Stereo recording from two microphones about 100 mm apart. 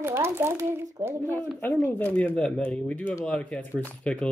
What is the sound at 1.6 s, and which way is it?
Speech, 15° left (ahead or behind).